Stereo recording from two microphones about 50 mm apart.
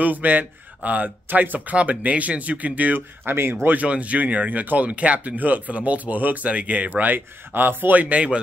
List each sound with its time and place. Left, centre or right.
0.0 s speech: right
3.3 s speech: right
3.6 s speech: right
8.0 s speech: right